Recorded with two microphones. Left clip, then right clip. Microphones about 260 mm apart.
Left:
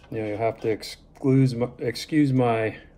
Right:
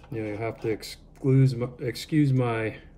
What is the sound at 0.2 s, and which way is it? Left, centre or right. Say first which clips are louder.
Speech: left 6 dB; left.